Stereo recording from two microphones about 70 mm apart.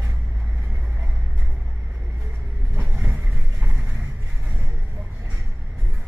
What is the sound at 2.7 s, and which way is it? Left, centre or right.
Vehicle, centre.